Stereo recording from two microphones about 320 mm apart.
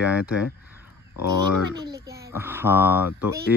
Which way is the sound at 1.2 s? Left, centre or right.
Left.